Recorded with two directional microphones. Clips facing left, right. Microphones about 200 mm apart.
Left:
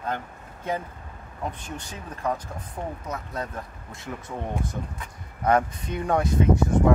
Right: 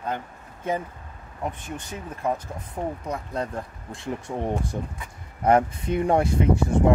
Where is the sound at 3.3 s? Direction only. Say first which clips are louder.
Right 3 dB; 30° right (ahead or behind).